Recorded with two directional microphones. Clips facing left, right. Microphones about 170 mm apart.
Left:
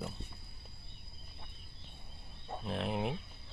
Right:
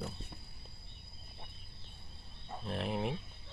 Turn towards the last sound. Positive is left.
turn(degrees=0)  # may be behind; listen again after turning